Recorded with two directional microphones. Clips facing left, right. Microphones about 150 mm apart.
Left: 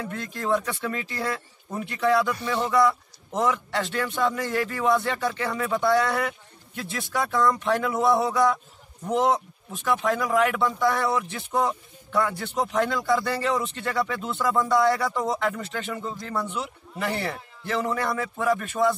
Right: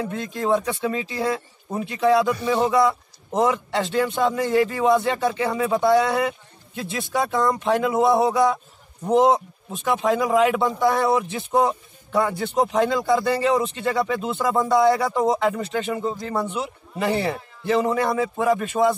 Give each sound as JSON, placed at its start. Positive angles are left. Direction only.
{"t": 0.0, "sound": "speech", "side_deg": -20}